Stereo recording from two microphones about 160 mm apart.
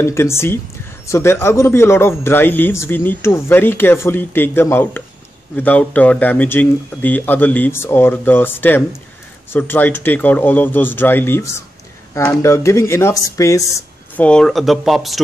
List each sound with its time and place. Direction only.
0.0 s speech: 15° left (ahead or behind)
14.2 s speech: 5° left (ahead or behind)